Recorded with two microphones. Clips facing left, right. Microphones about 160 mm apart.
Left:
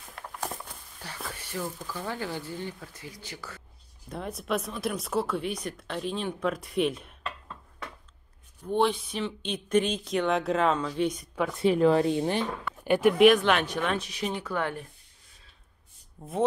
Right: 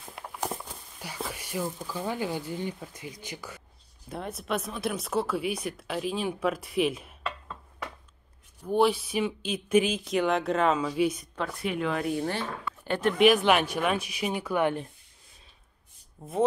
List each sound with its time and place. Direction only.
0.1 s a sound: 10° right (ahead or behind)
4.1 s speech: centre (ahead or behind)
8.6 s speech: 5° right (ahead or behind)
11.6 s speech: 35° left (ahead or behind); by 13.1 s 15° left (ahead or behind)
13.4 s speech: 10° right (ahead or behind)
16.2 s speech: centre (ahead or behind)